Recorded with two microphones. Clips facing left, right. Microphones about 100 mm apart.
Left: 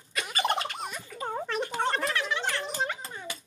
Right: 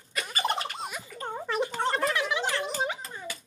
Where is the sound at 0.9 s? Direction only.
5° right (ahead or behind).